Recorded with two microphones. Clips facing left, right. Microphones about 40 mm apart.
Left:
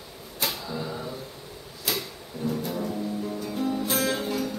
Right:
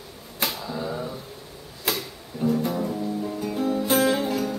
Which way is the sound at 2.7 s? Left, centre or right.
Centre.